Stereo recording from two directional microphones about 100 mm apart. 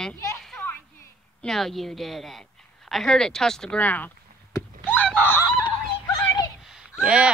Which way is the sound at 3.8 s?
15° left (ahead or behind).